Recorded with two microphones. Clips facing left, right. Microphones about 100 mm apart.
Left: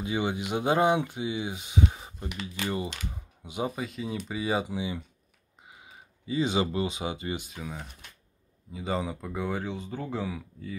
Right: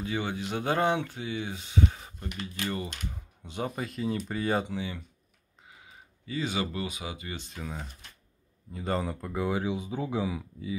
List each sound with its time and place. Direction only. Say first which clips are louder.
0.0 s speech: left 3 dB; 15° left (ahead or behind)
4.7 s speech: left 2 dB; 15° left (ahead or behind)
7.3 s speech: left 1 dB; 5° left (ahead or behind)